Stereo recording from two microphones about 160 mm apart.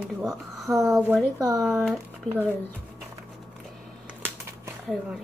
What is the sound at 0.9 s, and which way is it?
Speech, 15° right (ahead or behind).